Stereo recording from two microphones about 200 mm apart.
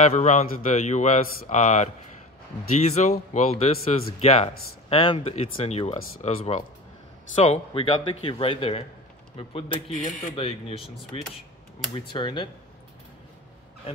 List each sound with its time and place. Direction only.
0.0 s a man's voice: 35° left (ahead or behind)
2.9 s a man's voice: 35° left (ahead or behind)